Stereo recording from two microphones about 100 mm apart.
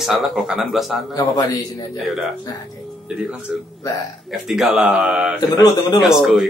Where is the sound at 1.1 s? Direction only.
40° left (ahead or behind).